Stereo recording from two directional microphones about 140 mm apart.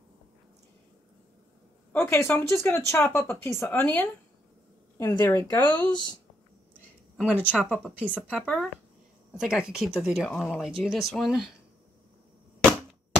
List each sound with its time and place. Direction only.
1.9 s speech: 15° left (ahead or behind)
5.1 s a woman's voice: 30° left (ahead or behind)
7.2 s speech: 10° right (ahead or behind)